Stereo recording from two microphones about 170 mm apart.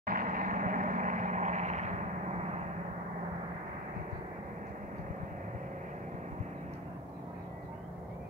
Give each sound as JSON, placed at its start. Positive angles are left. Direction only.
{"t": 0.0, "sound": "vehicle", "side_deg": -55}